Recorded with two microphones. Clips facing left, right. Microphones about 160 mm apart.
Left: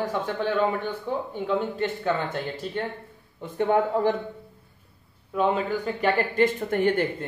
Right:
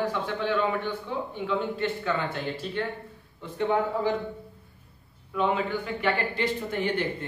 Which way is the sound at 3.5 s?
55° left (ahead or behind).